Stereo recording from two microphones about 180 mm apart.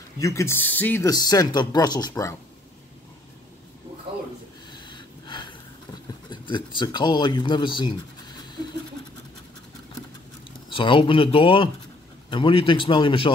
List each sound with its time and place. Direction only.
0.2 s speech: 15° left (ahead or behind)
4.6 s snort: 25° left (ahead or behind)
6.3 s speech: 25° left (ahead or behind)
10.7 s speech: 30° left (ahead or behind)